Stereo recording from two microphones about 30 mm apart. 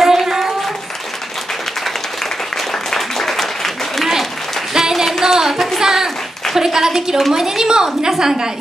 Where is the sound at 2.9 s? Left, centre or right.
Centre.